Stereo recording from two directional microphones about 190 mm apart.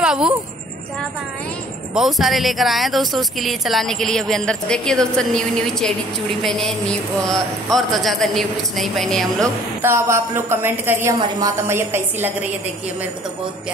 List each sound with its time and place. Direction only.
0.0 s a sound: 5° right (ahead or behind)
2.0 s speech: centre (ahead or behind)
9.4 s a woman's voice: 15° right (ahead or behind)